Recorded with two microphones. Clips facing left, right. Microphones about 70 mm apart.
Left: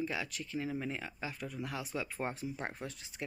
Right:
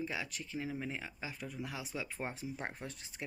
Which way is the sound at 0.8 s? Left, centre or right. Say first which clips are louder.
Left 2 dB; centre.